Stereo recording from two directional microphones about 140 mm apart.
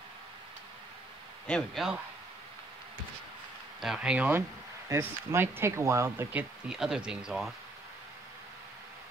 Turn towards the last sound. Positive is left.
turn(degrees=0)  # may be behind; listen again after turning